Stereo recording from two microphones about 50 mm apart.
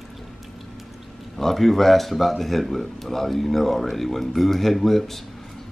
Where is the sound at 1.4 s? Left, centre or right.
Centre.